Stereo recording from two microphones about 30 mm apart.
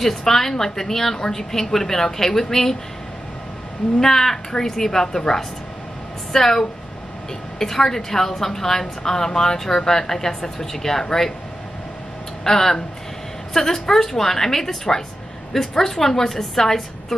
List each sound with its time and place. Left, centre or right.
0.0 s a woman's voice: centre
4.0 s a woman's voice: centre
6.3 s a woman's voice: centre
12.4 s a woman's voice: centre